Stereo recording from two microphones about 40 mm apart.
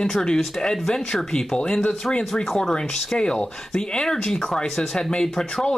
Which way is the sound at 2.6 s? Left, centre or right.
Centre.